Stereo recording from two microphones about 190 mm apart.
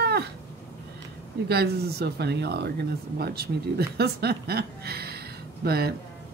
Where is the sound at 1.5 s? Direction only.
55° right (ahead or behind).